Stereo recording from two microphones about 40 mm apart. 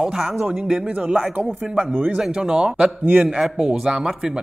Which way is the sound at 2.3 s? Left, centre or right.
Right.